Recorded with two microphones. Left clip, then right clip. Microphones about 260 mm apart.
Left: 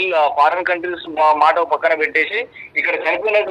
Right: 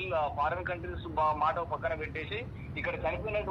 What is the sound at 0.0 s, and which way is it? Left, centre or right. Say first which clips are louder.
A man's voice: left 17 dB; left.